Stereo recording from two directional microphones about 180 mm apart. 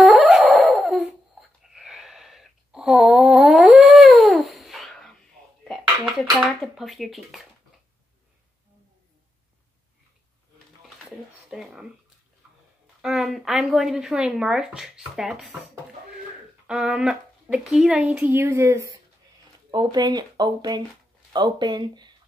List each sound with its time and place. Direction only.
0.0 s dog: centre (ahead or behind)
1.6 s a sound: centre (ahead or behind)
5.6 s dishes: centre (ahead or behind)
11.1 s a sound: centre (ahead or behind)
13.0 s speech: centre (ahead or behind)
16.6 s speech: 5° right (ahead or behind); by 22.1 s 25° right (ahead or behind)